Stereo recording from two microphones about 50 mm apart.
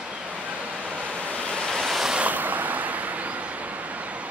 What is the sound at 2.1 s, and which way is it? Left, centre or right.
Vehicle, right.